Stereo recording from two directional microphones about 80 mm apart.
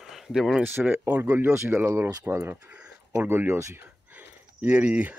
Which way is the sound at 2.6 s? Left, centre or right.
Centre.